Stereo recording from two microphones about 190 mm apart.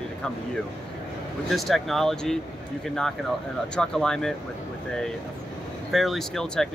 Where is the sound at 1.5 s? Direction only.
Centre (ahead or behind).